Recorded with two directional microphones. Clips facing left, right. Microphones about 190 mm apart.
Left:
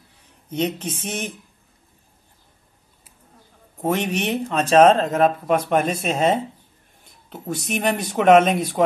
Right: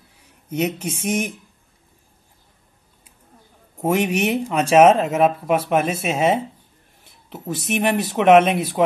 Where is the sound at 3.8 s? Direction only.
10° right (ahead or behind).